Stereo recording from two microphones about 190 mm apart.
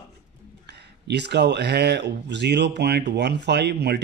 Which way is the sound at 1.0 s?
65° right (ahead or behind).